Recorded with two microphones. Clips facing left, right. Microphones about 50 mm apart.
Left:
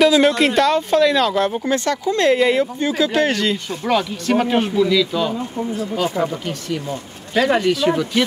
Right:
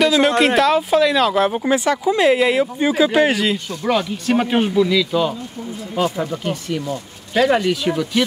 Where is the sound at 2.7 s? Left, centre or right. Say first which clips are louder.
Right 3 dB; centre.